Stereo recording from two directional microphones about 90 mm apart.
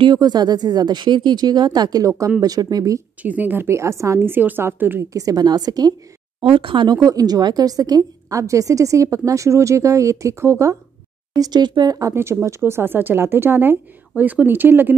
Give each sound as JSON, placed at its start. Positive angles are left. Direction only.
{"t": 0.0, "sound": "speech", "side_deg": -50}
{"t": 3.2, "sound": "speech", "side_deg": -15}
{"t": 5.1, "sound": "speech", "side_deg": -40}
{"t": 6.4, "sound": "speech", "side_deg": -75}
{"t": 7.0, "sound": "a woman's voice", "side_deg": -45}
{"t": 11.3, "sound": "speech", "side_deg": -50}
{"t": 12.1, "sound": "speech", "side_deg": -30}